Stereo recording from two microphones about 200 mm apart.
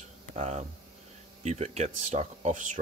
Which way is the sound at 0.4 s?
35° right (ahead or behind).